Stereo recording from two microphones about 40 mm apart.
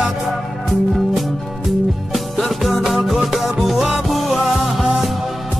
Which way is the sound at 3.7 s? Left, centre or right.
Centre.